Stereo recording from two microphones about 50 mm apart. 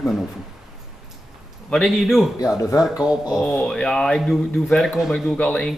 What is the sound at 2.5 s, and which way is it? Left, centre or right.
Speech, left.